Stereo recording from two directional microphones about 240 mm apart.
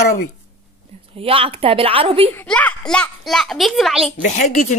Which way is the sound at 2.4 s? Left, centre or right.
Centre.